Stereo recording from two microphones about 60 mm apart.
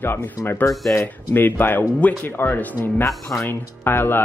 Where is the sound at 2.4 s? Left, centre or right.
Left.